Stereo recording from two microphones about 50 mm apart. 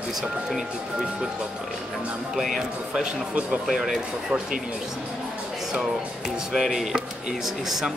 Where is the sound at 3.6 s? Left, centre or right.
Centre.